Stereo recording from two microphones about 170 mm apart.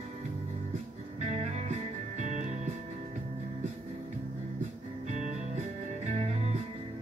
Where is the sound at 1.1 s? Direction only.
40° right (ahead or behind).